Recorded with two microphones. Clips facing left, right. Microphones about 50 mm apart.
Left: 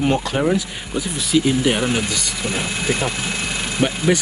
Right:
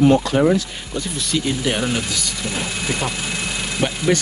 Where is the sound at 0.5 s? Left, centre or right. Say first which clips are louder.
Even; centre.